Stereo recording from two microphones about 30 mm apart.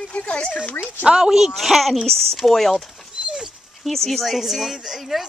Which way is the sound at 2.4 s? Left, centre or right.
Centre.